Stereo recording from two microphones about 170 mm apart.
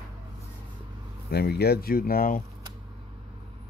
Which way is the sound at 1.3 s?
70° left (ahead or behind).